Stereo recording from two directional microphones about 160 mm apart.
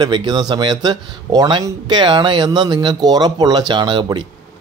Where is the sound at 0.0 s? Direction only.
30° right (ahead or behind).